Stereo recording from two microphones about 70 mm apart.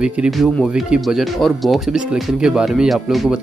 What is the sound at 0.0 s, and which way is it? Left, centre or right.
Speech, centre.